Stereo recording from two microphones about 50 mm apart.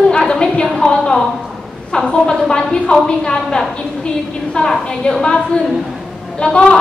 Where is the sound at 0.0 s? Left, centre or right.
Centre.